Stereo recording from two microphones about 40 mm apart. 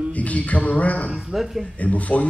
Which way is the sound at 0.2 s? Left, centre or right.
Left.